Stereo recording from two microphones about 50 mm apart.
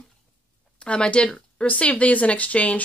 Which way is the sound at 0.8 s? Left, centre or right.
Left.